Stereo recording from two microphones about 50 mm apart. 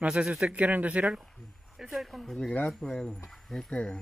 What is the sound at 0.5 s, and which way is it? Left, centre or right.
Speech, right.